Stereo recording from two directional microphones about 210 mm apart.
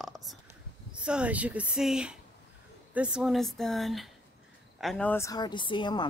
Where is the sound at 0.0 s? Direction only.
Centre (ahead or behind).